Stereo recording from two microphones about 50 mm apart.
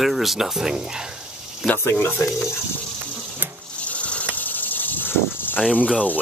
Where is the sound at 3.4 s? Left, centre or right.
Right.